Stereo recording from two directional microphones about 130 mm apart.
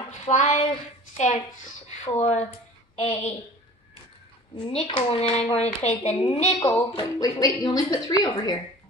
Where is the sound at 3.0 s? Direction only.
45° left (ahead or behind).